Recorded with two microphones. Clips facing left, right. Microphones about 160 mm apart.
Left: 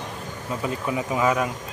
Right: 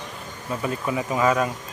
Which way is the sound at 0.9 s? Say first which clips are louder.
Right 1 dB; 15° left (ahead or behind).